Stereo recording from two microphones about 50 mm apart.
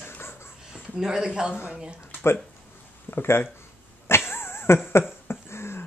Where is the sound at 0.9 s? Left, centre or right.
Centre.